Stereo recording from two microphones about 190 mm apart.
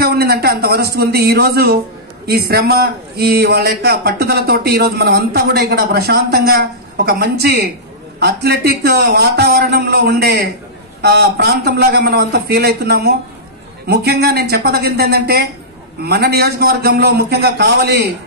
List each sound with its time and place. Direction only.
0.0 s a man's voice: 55° right (ahead or behind)